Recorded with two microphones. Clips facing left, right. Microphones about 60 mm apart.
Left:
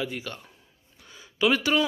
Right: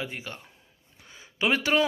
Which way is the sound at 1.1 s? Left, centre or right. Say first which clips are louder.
Left 3 dB; right.